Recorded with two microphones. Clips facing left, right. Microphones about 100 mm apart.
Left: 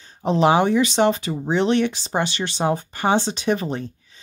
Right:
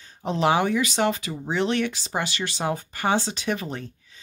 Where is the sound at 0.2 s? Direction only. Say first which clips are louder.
Left 5 dB; 25° left (ahead or behind).